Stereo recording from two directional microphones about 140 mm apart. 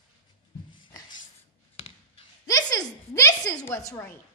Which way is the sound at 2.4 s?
25° left (ahead or behind).